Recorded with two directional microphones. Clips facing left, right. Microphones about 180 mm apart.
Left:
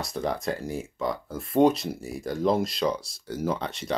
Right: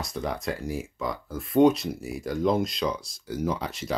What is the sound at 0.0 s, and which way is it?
Speech, centre (ahead or behind).